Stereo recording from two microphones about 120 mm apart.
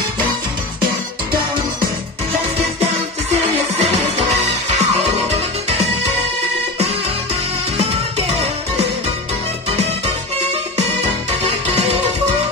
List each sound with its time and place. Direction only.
4.2 s music: 70° right (ahead or behind)